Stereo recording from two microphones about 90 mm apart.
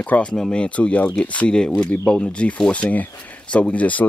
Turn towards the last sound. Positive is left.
turn(degrees=15)  # may be behind; listen again after turning